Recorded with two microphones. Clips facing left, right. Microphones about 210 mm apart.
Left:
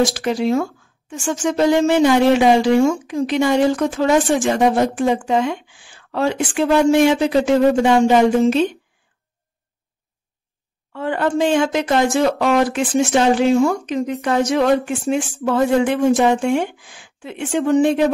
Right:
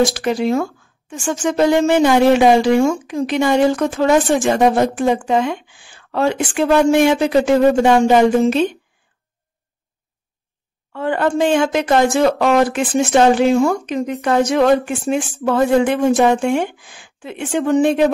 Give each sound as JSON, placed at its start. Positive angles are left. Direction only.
{"t": 0.1, "sound": "speech", "side_deg": -55}
{"t": 10.9, "sound": "speech", "side_deg": -55}